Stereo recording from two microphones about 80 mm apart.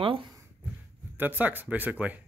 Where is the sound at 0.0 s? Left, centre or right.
Right.